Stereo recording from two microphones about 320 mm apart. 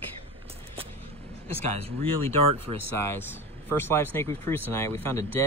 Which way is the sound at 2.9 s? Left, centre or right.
Centre.